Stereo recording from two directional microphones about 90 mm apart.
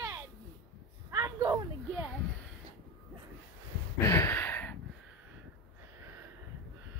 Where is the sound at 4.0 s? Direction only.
30° left (ahead or behind).